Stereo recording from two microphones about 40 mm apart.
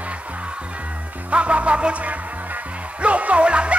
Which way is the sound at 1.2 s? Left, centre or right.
Right.